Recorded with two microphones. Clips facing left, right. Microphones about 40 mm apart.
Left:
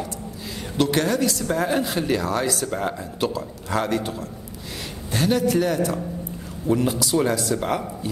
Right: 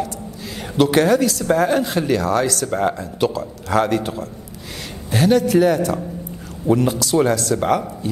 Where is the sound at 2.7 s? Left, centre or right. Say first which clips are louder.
Right 6 dB; centre.